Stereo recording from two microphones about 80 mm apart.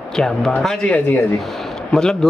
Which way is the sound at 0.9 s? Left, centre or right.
Centre.